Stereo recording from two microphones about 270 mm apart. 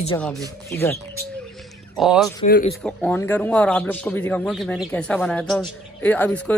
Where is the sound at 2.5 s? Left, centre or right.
Left.